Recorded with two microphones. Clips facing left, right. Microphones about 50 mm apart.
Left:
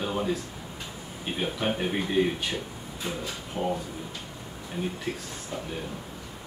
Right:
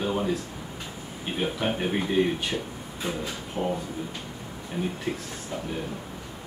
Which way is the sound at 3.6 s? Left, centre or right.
Right.